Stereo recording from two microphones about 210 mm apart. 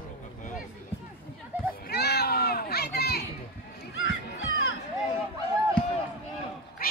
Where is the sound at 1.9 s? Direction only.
50° left (ahead or behind).